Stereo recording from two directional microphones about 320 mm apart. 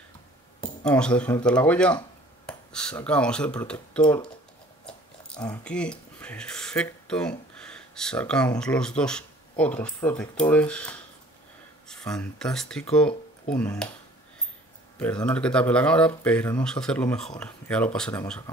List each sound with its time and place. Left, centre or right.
0.8 s speech: centre
15.0 s speech: centre